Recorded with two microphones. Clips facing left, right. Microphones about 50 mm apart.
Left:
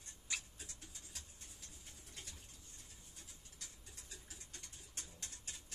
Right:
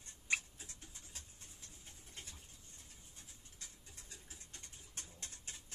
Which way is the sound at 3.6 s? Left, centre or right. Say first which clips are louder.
Even; right.